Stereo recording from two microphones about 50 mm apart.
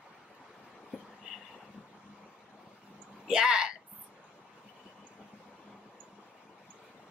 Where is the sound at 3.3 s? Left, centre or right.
Centre.